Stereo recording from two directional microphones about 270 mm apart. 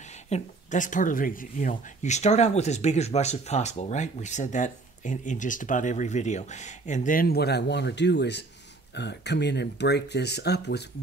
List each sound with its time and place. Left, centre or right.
0.3 s speech: left